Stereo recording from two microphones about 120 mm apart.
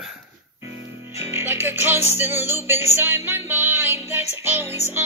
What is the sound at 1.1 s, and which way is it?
Music, 20° right (ahead or behind).